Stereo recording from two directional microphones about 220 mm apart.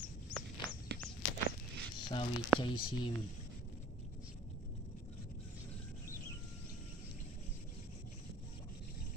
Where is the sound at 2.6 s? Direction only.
20° left (ahead or behind).